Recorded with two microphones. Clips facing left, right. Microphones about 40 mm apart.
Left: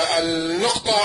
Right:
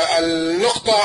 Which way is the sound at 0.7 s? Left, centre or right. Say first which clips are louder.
Right 4 dB; centre.